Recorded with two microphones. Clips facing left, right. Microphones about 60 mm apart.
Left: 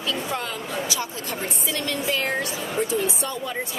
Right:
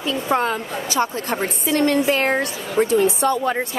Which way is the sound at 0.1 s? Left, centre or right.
Right.